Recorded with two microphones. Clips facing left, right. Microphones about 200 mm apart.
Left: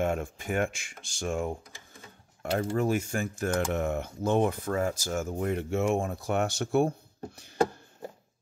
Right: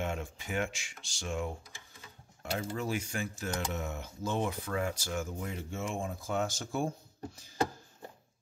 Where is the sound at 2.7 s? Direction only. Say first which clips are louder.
Left 8 dB; 50° left (ahead or behind); by 6.9 s 70° left (ahead or behind).